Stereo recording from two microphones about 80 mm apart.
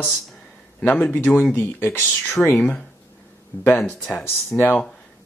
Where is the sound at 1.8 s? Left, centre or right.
Left.